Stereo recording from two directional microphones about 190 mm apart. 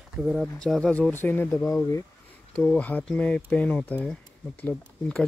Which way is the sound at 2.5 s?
5° left (ahead or behind).